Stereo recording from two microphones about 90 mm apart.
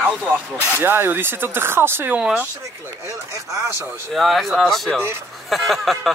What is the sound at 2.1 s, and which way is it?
Speech, 10° right (ahead or behind).